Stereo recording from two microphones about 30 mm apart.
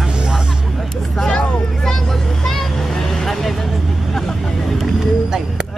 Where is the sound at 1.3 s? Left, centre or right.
Left.